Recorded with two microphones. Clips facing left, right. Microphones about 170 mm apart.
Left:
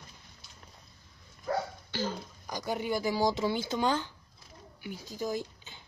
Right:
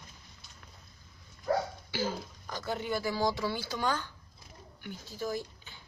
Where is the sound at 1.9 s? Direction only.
10° right (ahead or behind).